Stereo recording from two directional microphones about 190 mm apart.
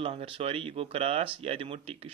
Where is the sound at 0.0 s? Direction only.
30° right (ahead or behind).